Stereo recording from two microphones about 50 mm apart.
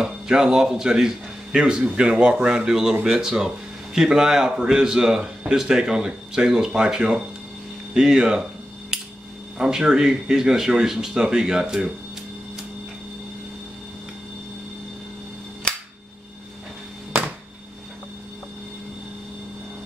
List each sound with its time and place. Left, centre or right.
0.0 s a man's voice: centre
9.6 s a man's voice: centre
15.7 s cap gun: centre